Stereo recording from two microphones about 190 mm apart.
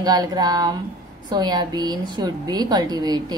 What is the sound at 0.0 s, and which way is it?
A woman's voice, 20° right (ahead or behind).